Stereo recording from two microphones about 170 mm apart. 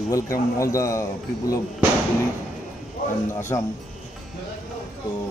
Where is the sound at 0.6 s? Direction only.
20° left (ahead or behind).